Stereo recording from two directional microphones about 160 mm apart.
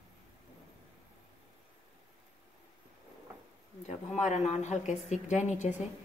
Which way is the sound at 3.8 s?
45° left (ahead or behind).